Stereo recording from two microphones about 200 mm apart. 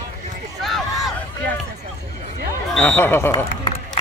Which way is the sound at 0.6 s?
Centre (ahead or behind).